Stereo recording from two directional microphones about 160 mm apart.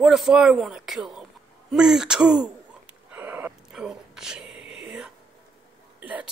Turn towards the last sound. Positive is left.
turn(degrees=-10)  # may be behind; listen again after turning